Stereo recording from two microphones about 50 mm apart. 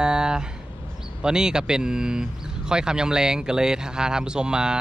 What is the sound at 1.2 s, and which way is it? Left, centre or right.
Speech, centre.